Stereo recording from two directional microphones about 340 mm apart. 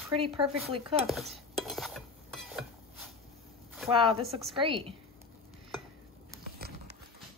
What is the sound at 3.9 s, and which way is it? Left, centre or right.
Chopping, centre.